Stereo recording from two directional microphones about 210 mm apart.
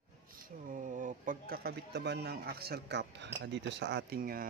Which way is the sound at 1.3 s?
45° right (ahead or behind).